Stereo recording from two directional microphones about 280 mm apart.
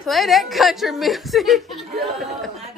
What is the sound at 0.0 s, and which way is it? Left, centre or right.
A woman's voice, centre.